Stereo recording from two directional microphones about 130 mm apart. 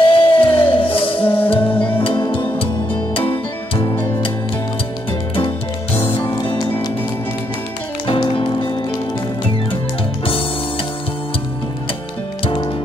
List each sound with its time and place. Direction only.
0.1 s music: 45° left (ahead or behind)
1.7 s music: 15° left (ahead or behind)
2.0 s music: 40° left (ahead or behind)
5.9 s music: 45° left (ahead or behind)
8.1 s music: 45° left (ahead or behind)
12.4 s music: 40° left (ahead or behind)